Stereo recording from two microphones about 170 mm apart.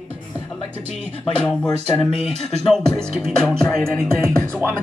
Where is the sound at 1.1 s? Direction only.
35° right (ahead or behind).